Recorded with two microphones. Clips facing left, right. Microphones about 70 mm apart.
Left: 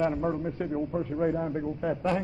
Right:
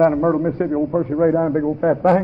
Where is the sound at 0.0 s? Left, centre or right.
Right.